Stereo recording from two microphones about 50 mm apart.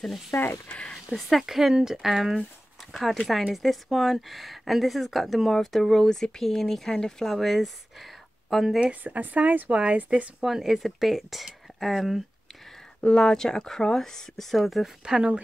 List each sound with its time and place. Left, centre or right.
0.3 s speech: left
1.4 s speech: centre
9.0 s speech: right
10.4 s speech: centre
13.1 s speech: centre
15.0 s speech: centre